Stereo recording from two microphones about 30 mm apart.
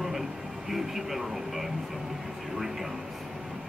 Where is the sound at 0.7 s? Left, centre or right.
Centre.